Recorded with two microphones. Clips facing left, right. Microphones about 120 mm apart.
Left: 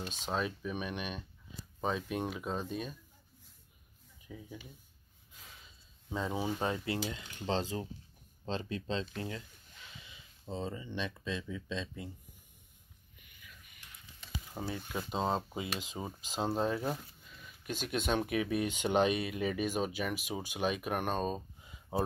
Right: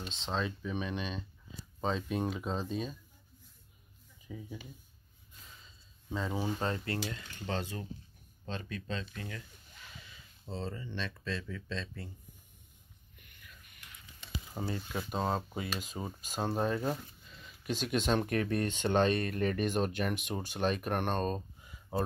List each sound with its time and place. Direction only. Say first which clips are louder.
0.3 s speech: even; 10° left (ahead or behind)
4.3 s speech: right 3 dB; 5° right (ahead or behind)
6.0 s speech: even; 15° left (ahead or behind)
10.0 s speech: left 4 dB; 15° left (ahead or behind)
13.3 s whispering: left 1 dB; centre (ahead or behind)
14.8 s speech: left 2 dB; 15° left (ahead or behind)
16.0 s speech: left 1 dB; centre (ahead or behind)
21.6 s a sound: even; 20° left (ahead or behind)